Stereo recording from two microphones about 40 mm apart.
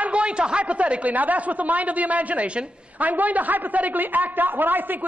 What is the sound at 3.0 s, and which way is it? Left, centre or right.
A woman's voice, right.